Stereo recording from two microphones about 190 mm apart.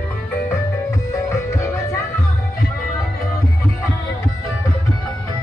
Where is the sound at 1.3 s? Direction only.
15° left (ahead or behind).